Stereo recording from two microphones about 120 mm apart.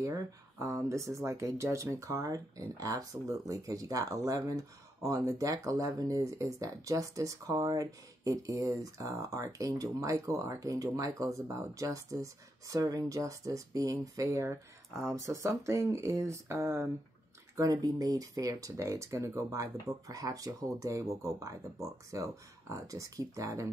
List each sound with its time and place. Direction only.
0.0 s speech: 25° right (ahead or behind)